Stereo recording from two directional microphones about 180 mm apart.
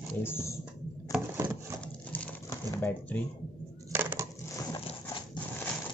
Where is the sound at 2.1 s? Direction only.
15° left (ahead or behind).